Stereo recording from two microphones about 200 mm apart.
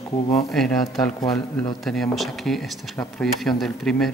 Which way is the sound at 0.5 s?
Centre (ahead or behind).